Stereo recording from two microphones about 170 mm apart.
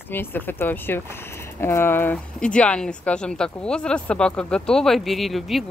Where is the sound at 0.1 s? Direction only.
10° left (ahead or behind).